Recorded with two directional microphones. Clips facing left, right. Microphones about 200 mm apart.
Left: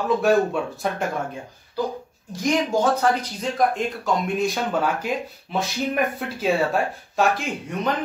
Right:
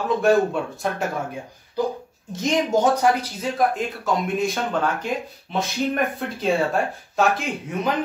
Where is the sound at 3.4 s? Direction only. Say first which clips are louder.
Even; 5° right (ahead or behind).